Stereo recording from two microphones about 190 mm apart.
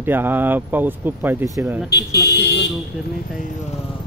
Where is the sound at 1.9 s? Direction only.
60° left (ahead or behind).